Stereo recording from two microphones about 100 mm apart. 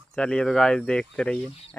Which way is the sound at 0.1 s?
10° left (ahead or behind).